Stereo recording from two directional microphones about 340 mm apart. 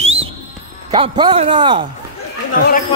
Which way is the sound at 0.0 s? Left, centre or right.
Centre.